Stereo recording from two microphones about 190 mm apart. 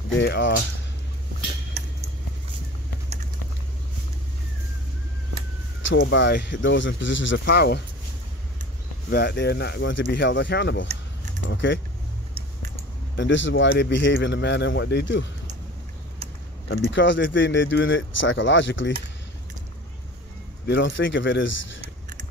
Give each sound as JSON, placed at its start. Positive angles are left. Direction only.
{"t": 0.1, "sound": "speech", "side_deg": 65}
{"t": 5.9, "sound": "speech", "side_deg": 70}
{"t": 9.1, "sound": "speech", "side_deg": 60}
{"t": 13.1, "sound": "speech", "side_deg": 70}
{"t": 16.6, "sound": "speech", "side_deg": 75}
{"t": 20.6, "sound": "speech", "side_deg": 70}